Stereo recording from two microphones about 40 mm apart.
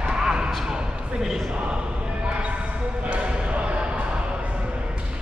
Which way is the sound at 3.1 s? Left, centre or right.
Right.